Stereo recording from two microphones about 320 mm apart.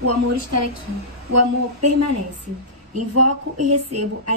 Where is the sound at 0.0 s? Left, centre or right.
Right.